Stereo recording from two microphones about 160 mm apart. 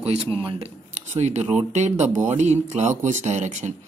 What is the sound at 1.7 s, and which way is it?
Speech, 45° right (ahead or behind).